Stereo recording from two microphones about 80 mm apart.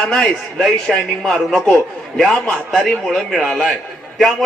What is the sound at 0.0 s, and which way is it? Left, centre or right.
A man's voice, centre.